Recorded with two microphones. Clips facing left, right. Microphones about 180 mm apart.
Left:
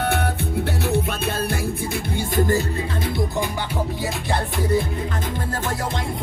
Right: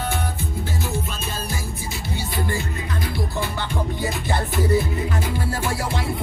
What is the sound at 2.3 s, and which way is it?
Music, 45° left (ahead or behind).